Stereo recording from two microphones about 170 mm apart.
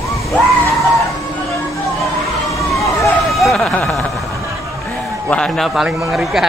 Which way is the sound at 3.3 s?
Centre (ahead or behind).